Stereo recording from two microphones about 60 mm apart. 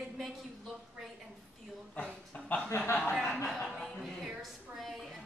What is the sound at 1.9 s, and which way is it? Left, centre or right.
Speech, left.